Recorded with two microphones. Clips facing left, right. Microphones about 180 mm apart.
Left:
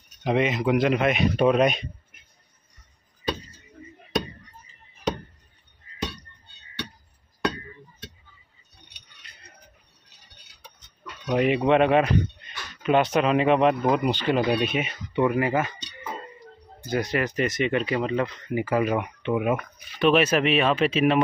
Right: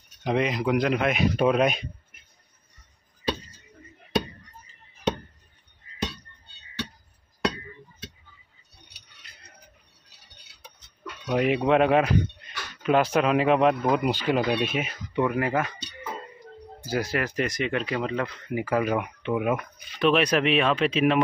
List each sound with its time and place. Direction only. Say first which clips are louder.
0.2 s speech: left 2 dB; centre (ahead or behind)
11.2 s speech: left 1 dB; centre (ahead or behind)
16.8 s speech: left 2 dB; 5° right (ahead or behind)